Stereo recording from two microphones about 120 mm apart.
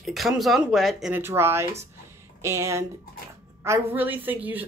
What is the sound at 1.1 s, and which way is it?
Speech, 20° right (ahead or behind).